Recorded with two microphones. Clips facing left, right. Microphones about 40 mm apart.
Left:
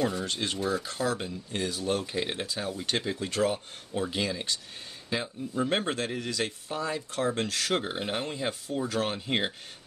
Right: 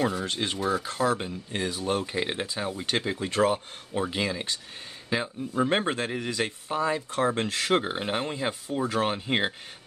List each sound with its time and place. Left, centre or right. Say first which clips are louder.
0.2 s speech: right 2 dB; centre
5.7 s speech: right 3 dB; right